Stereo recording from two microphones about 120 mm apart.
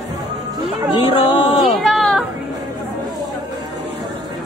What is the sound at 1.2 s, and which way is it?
Speech, 45° left (ahead or behind).